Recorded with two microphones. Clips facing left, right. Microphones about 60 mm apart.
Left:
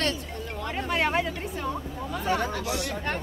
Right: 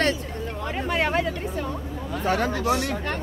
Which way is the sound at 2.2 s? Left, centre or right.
Right.